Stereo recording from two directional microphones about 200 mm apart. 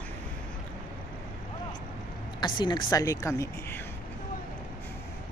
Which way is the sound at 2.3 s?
25° left (ahead or behind).